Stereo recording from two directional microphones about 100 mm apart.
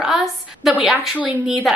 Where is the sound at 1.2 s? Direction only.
15° right (ahead or behind).